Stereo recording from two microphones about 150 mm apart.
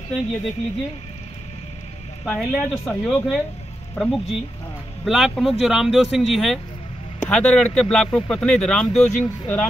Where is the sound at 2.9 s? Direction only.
5° left (ahead or behind).